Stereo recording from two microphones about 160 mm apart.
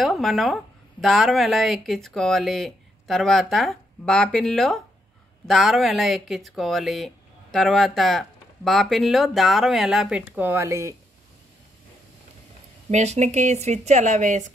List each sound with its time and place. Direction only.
0.0 s speech: centre (ahead or behind); by 11.0 s 15° right (ahead or behind)
12.9 s a woman's voice: 45° right (ahead or behind)